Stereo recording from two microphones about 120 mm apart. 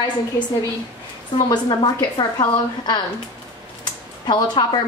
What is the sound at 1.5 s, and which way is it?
Speech, 35° left (ahead or behind).